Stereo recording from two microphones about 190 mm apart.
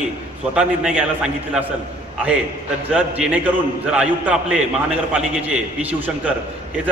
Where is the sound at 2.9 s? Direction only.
5° right (ahead or behind).